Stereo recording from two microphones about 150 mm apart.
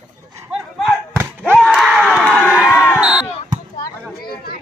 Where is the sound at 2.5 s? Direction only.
5° right (ahead or behind).